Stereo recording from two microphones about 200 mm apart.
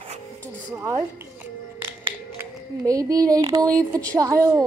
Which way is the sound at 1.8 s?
10° right (ahead or behind).